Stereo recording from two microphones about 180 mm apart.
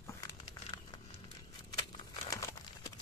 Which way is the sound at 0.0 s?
15° left (ahead or behind).